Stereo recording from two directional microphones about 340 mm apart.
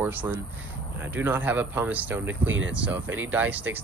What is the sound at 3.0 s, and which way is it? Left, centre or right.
Speech, right.